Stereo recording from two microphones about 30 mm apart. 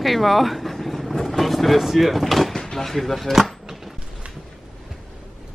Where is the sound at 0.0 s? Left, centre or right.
Centre.